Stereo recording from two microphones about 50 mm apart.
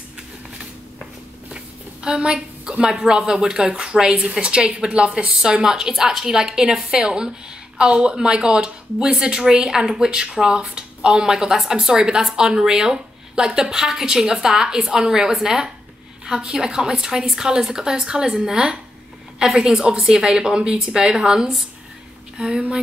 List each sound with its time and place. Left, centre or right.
2.0 s a woman's voice: centre